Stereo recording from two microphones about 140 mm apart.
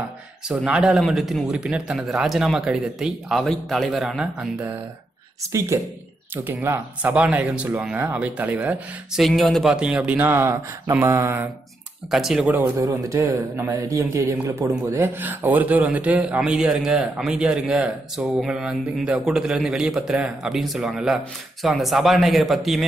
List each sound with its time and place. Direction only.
0.5 s speech: 5° right (ahead or behind)
5.7 s a man's voice: 20° right (ahead or behind)
9.2 s a man's voice: centre (ahead or behind); by 11.5 s 15° right (ahead or behind)
12.1 s speech: 5° right (ahead or behind)
12.5 s a man's voice: 20° right (ahead or behind); by 22.8 s centre (ahead or behind)